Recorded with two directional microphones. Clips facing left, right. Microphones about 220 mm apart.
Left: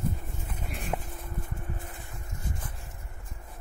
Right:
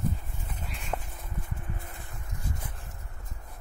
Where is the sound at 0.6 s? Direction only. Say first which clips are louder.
Left 5 dB; 50° left (ahead or behind).